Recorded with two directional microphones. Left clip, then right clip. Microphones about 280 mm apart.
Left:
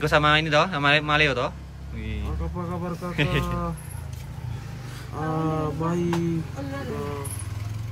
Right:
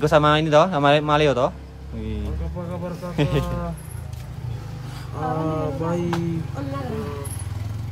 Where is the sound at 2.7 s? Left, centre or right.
Left.